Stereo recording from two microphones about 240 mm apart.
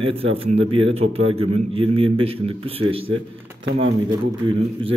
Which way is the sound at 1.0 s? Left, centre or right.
Right.